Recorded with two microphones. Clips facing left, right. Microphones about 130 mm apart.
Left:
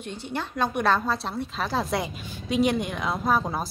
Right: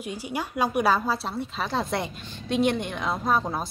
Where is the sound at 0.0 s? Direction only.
10° right (ahead or behind).